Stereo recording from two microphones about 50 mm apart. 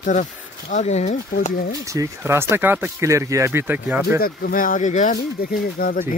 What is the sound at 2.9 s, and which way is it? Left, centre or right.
Speech, right.